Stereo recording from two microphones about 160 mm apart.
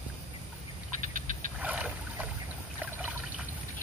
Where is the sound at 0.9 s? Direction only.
55° right (ahead or behind).